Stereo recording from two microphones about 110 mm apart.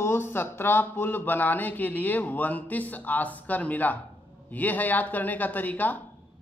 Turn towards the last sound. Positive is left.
turn(degrees=15)  # may be behind; listen again after turning